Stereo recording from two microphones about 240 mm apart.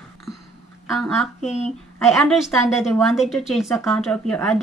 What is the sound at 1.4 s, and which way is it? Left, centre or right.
Speech, left.